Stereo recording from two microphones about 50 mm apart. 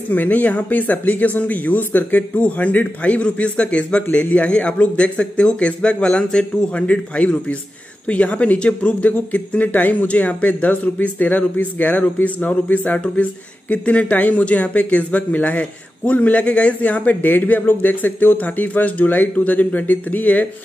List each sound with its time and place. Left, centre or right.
0.1 s a man's voice: left